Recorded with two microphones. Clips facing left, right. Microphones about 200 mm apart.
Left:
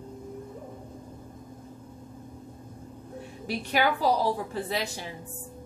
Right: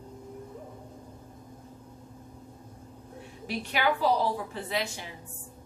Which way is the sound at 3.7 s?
40° left (ahead or behind).